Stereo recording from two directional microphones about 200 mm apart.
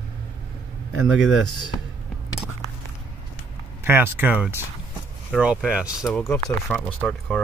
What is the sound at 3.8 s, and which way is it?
Speech, 10° right (ahead or behind).